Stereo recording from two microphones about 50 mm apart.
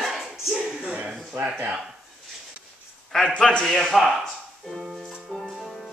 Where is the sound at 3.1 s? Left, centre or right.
Centre.